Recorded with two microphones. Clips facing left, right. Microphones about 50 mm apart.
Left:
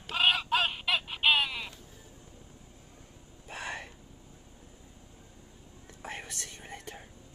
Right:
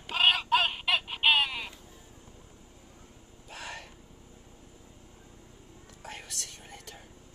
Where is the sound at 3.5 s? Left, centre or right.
Left.